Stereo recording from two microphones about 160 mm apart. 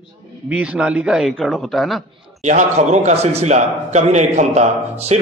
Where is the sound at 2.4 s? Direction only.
45° right (ahead or behind).